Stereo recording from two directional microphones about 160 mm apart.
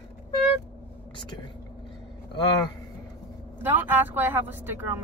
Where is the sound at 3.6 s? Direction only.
10° right (ahead or behind).